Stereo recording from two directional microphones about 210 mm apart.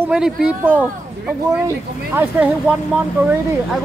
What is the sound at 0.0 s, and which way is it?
Speech, 5° right (ahead or behind).